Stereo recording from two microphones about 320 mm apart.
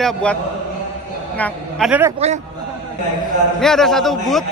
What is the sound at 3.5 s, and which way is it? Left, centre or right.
Speech, centre.